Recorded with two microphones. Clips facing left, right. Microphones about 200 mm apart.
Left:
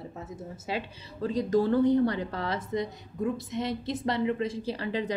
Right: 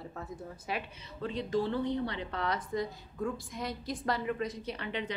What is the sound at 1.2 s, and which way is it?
A woman's voice, 40° left (ahead or behind).